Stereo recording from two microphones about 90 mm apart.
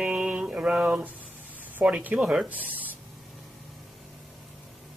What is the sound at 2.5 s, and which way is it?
Spray, 20° right (ahead or behind).